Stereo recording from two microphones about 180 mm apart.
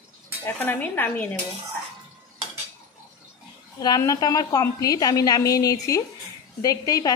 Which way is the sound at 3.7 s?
20° left (ahead or behind).